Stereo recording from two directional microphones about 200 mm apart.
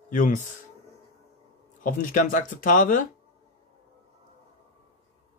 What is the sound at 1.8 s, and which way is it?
A man's voice, 45° left (ahead or behind).